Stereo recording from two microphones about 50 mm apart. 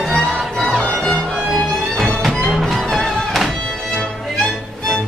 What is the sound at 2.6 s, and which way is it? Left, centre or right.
Music, centre.